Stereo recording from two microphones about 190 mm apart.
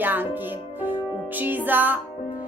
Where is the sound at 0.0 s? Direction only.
10° right (ahead or behind).